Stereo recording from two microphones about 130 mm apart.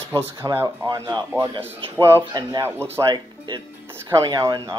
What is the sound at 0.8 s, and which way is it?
Speech, 30° right (ahead or behind).